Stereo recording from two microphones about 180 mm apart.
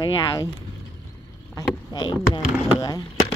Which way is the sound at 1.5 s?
25° left (ahead or behind).